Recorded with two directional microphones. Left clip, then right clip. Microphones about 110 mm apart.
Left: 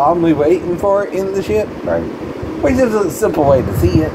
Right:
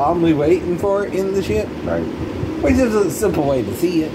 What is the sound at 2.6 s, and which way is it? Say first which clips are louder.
Speech: left 3 dB; 40° left (ahead or behind).